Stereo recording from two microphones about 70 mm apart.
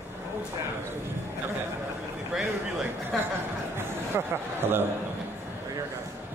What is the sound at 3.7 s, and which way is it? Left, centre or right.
A man's voice, right.